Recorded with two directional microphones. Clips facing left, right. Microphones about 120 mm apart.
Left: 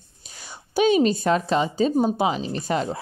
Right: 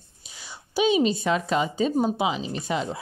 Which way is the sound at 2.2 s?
45° left (ahead or behind).